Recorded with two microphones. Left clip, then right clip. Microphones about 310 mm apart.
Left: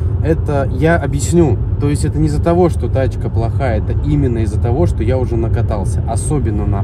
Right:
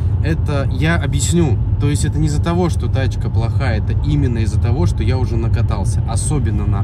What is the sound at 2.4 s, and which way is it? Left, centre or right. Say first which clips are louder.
Speech: left 8 dB; centre.